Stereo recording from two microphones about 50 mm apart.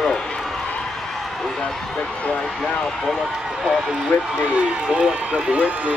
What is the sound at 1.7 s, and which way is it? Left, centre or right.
Speech, centre.